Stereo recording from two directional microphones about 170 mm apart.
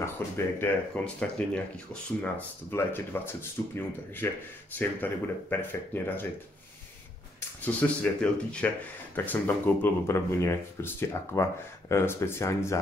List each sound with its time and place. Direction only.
0.2 s speech: 10° left (ahead or behind)
7.6 s speech: 10° left (ahead or behind)